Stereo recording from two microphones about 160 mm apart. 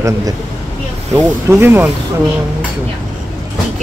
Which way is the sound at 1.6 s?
15° right (ahead or behind).